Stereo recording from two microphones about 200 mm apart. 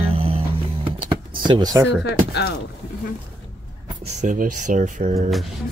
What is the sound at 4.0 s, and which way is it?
Speech, 35° right (ahead or behind).